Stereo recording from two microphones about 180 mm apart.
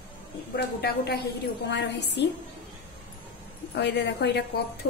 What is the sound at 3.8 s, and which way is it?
Speech, 70° left (ahead or behind).